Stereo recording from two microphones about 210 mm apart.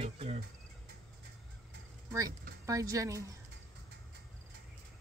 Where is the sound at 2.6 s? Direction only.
15° right (ahead or behind).